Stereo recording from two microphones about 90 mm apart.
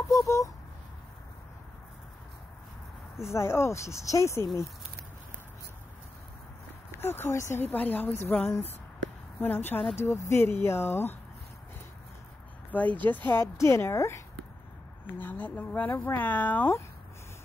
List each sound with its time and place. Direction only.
0.1 s speech: 35° left (ahead or behind)
3.3 s speech: 30° left (ahead or behind)
6.9 s speech: 25° left (ahead or behind)
7.6 s a woman's voice: 20° left (ahead or behind)
10.0 s a woman's voice: 30° left (ahead or behind)
12.7 s a woman's voice: 15° left (ahead or behind)
15.1 s a woman's voice: 20° left (ahead or behind)